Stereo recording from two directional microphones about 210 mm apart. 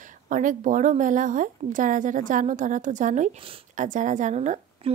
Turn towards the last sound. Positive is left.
turn(degrees=-30)  # may be behind; listen again after turning